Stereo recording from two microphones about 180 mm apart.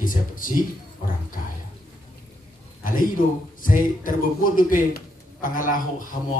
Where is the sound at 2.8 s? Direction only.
50° left (ahead or behind).